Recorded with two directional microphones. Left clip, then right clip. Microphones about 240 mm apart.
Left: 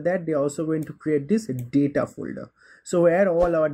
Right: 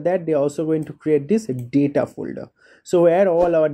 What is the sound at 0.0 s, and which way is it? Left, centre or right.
Speech, centre.